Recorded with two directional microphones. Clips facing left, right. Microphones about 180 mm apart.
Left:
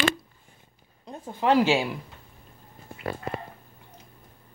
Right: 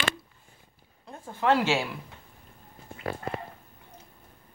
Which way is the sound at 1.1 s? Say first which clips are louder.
Left 2 dB; 15° left (ahead or behind).